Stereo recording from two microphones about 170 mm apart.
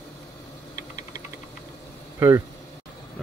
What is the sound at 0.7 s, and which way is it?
Typing, 50° left (ahead or behind).